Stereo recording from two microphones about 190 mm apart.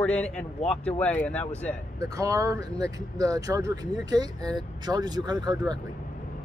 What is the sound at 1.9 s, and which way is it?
Speech, 15° right (ahead or behind).